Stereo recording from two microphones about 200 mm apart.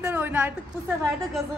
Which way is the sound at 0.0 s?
10° right (ahead or behind).